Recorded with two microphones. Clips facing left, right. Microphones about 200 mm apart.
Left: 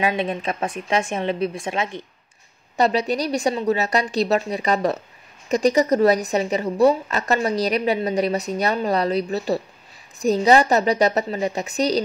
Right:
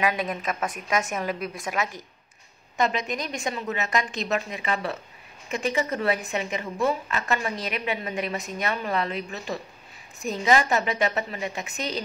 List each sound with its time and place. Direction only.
0.0 s a woman's voice: 30° left (ahead or behind)